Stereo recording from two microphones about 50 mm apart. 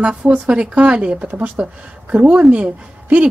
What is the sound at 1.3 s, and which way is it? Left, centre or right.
Speech, right.